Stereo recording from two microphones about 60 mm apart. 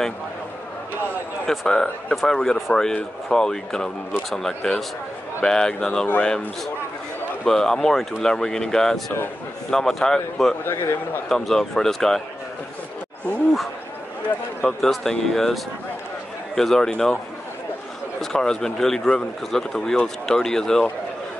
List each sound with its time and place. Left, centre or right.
1.5 s speech: centre
10.6 s a man's voice: left
11.2 s speech: centre
14.8 s speech: centre
18.2 s speech: centre